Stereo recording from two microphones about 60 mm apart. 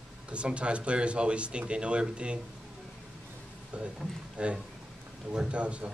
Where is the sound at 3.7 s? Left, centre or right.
Right.